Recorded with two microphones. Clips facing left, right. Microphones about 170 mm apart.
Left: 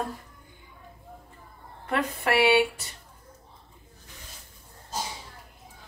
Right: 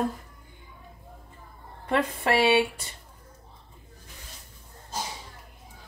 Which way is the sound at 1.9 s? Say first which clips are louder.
Right 2 dB; 25° right (ahead or behind).